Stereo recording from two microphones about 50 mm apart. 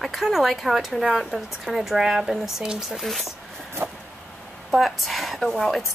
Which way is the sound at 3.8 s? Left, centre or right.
Right.